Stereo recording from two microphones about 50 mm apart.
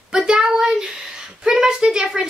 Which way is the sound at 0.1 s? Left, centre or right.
Centre.